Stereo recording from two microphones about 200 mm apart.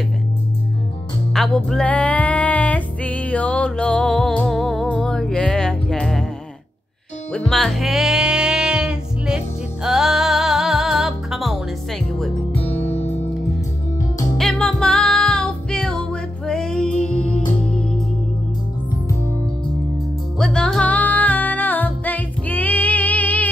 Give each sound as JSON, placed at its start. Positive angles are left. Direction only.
{"t": 1.3, "sound": "music", "side_deg": 0}
{"t": 7.3, "sound": "music", "side_deg": 0}
{"t": 12.8, "sound": "music", "side_deg": 30}
{"t": 14.3, "sound": "music", "side_deg": 0}
{"t": 20.3, "sound": "music", "side_deg": 5}